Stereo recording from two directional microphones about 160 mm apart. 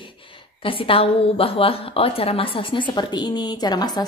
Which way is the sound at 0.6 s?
35° left (ahead or behind).